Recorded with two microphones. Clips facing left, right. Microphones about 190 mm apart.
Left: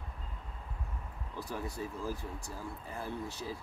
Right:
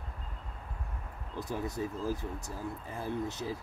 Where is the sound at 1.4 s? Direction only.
20° right (ahead or behind).